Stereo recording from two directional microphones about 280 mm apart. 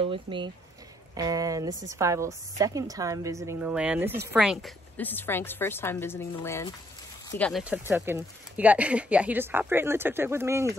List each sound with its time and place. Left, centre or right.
0.0 s a woman's voice: centre